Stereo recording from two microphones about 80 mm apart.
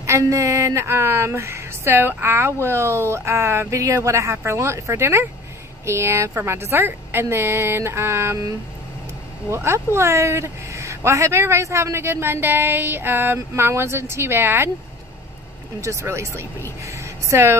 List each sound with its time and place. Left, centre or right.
0.2 s a woman's voice: right
9.5 s a woman's voice: right
15.8 s a woman's voice: right